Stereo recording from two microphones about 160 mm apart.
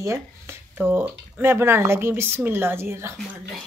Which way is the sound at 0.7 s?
10° right (ahead or behind).